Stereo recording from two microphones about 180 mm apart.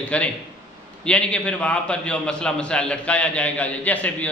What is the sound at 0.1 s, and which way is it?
A man's voice, 5° left (ahead or behind).